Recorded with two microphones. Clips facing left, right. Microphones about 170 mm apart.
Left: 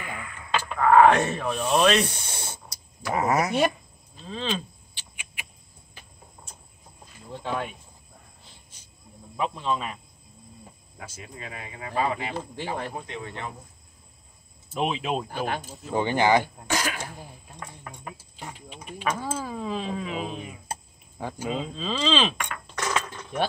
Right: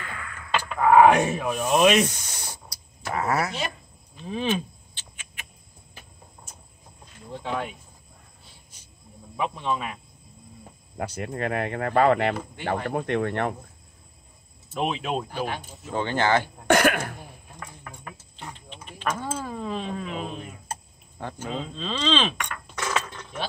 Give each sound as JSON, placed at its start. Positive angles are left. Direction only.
{"t": 0.0, "sound": "a sound", "side_deg": 15}
{"t": 0.7, "sound": "speech", "side_deg": -15}
{"t": 2.0, "sound": "speech", "side_deg": 30}
{"t": 4.3, "sound": "speech", "side_deg": -15}
{"t": 4.9, "sound": "rodents", "side_deg": 10}
{"t": 9.4, "sound": "speech", "side_deg": -10}
{"t": 11.0, "sound": "speech", "side_deg": -65}
{"t": 14.7, "sound": "speech", "side_deg": 0}
{"t": 15.2, "sound": "speech", "side_deg": 50}
{"t": 15.9, "sound": "speech", "side_deg": 15}
{"t": 16.6, "sound": "speech", "side_deg": -60}
{"t": 17.8, "sound": "a sound", "side_deg": 10}
{"t": 21.2, "sound": "speech", "side_deg": 10}